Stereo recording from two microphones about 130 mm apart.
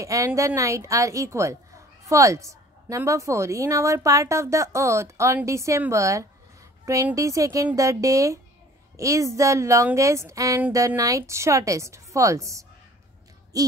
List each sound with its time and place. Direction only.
0.0 s a woman's voice: 25° right (ahead or behind)